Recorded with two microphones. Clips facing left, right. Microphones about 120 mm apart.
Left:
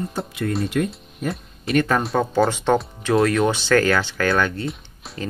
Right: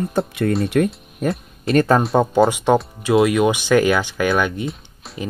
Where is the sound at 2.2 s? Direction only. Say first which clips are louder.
Right 4 dB; 15° right (ahead or behind).